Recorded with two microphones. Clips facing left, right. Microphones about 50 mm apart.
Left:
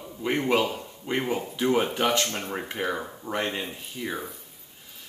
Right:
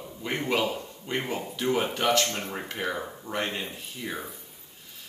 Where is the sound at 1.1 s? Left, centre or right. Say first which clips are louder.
Left 3 dB; centre.